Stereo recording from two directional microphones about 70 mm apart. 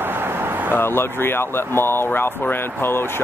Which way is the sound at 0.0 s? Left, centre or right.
Right.